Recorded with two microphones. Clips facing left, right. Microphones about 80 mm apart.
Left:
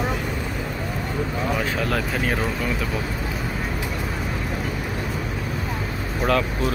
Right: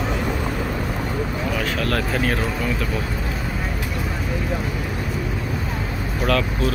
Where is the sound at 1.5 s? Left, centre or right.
Centre.